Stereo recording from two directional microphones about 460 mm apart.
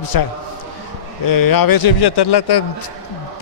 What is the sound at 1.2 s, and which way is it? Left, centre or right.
Speech, left.